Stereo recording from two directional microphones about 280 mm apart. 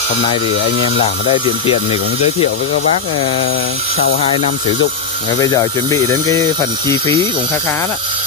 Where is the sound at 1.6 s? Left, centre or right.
Left.